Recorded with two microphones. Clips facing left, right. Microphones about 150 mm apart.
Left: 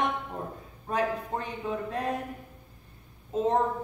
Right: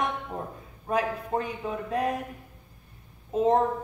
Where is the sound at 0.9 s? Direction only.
30° left (ahead or behind).